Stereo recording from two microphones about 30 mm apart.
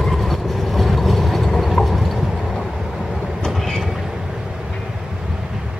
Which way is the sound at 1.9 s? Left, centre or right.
Centre.